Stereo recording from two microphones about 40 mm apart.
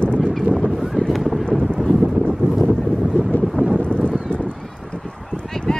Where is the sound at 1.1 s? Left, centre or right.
Centre.